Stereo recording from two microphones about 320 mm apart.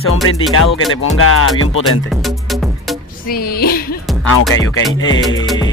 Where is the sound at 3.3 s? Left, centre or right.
Left.